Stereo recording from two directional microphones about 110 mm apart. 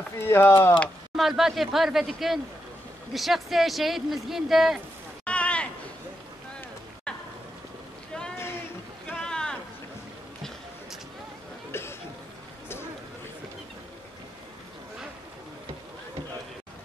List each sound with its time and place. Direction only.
0.2 s speech: 20° left (ahead or behind)
1.1 s speech: centre (ahead or behind)
5.2 s a sound: 10° left (ahead or behind)
7.1 s a sound: 10° left (ahead or behind)
9.1 s boat: 5° left (ahead or behind)
11.7 s cough: 20° left (ahead or behind)